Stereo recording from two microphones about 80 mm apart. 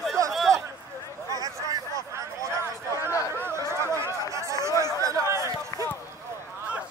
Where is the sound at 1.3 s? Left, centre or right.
Right.